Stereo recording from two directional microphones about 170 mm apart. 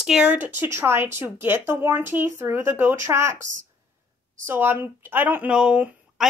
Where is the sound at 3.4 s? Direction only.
50° right (ahead or behind).